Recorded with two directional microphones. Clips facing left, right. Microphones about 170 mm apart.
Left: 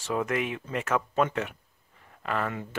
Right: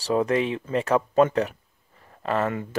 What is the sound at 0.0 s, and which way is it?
Speech, 30° right (ahead or behind).